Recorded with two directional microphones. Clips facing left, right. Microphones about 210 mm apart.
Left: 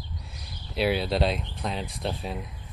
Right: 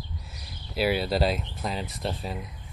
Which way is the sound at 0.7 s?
Centre (ahead or behind).